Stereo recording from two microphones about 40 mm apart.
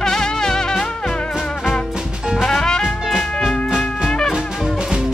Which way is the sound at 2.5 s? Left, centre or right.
Centre.